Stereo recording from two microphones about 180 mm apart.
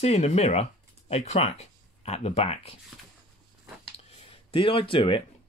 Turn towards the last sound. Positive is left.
turn(degrees=30)  # may be behind; listen again after turning